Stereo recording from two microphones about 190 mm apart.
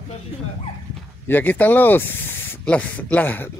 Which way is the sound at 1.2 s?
10° left (ahead or behind).